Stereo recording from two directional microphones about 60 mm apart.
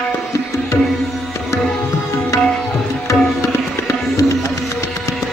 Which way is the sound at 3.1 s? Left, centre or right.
Left.